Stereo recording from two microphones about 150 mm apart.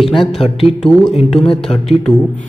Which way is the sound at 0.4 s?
40° left (ahead or behind).